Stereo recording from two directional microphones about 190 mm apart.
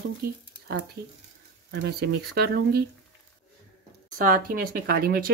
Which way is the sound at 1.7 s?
65° right (ahead or behind).